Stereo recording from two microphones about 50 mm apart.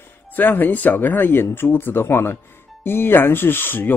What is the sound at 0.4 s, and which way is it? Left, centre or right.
Speech, left.